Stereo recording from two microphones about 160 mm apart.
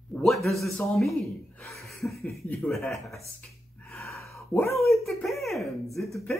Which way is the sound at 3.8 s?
10° left (ahead or behind).